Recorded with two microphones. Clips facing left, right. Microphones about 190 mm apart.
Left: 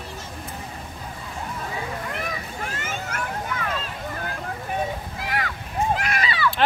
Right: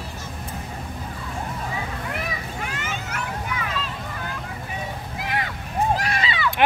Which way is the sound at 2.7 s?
50° left (ahead or behind).